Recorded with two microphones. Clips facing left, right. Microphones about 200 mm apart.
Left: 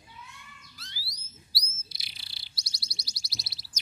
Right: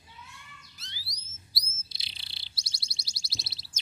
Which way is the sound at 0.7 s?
20° right (ahead or behind).